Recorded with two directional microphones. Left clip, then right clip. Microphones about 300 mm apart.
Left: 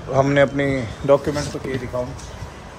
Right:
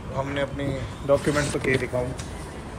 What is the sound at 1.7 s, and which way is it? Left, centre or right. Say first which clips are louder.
Speech: right 7 dB; centre.